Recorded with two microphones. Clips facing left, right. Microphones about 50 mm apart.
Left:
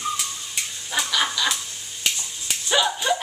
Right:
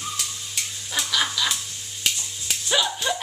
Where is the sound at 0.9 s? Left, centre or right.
Centre.